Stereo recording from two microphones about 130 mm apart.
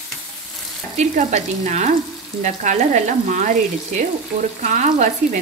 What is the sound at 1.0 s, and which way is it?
Frying, 70° right (ahead or behind).